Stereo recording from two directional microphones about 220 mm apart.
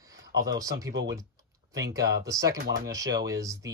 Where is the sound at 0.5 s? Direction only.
15° right (ahead or behind).